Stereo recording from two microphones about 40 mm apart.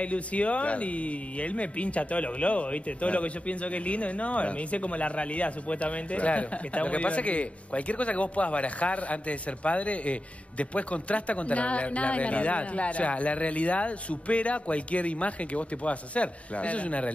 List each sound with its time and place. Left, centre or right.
0.0 s speech: left